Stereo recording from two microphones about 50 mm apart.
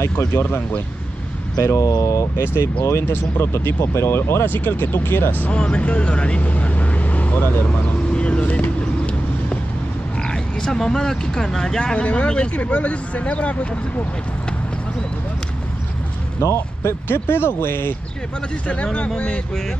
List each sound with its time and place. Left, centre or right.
0.3 s speech: left
1.6 s speech: left
2.4 s speech: left
2.8 s speech: left
3.2 s speech: left
4.5 s speech: left
5.5 s speech: left
8.1 s vehicle: left
10.2 s speech: centre
16.3 s speech: left
18.9 s speech: left